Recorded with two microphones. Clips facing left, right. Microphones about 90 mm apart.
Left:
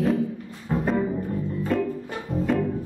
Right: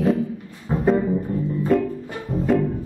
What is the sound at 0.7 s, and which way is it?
Music, 25° right (ahead or behind).